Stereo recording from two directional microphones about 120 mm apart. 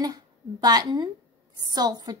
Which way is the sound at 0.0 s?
35° right (ahead or behind).